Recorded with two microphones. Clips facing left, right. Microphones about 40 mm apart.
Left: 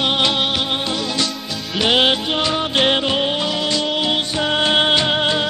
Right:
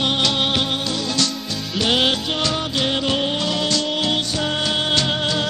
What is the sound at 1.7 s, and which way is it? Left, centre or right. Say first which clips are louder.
Music: left 3 dB; left.